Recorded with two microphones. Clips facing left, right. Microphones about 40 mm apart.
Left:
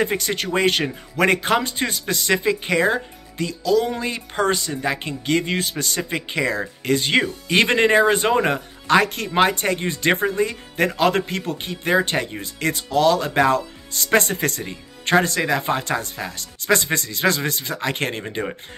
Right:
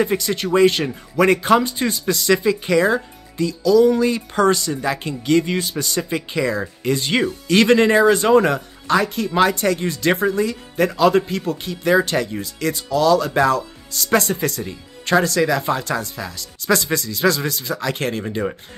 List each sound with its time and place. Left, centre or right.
0.0 s speech: left
7.4 s speech: left
8.8 s speech: left
9.5 s speech: left